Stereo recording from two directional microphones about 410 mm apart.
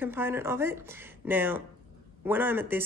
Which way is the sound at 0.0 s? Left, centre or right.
Centre.